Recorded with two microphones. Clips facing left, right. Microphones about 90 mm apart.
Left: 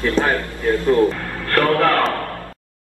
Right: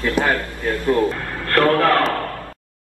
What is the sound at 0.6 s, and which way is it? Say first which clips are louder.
Speech: left 3 dB; 20° right (ahead or behind).